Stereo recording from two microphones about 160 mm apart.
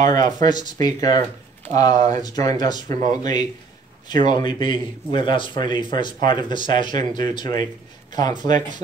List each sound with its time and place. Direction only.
0.1 s a man's voice: 25° left (ahead or behind)
2.0 s speech: 45° right (ahead or behind)
2.2 s a man's voice: 25° left (ahead or behind)